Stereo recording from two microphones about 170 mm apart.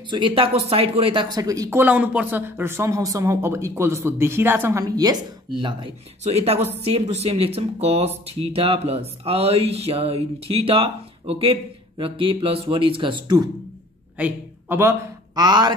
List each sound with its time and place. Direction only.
0.1 s speech: 30° right (ahead or behind)
14.1 s a man's voice: 10° right (ahead or behind)